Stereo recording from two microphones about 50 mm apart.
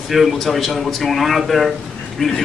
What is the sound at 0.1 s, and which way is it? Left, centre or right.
A man's voice, centre.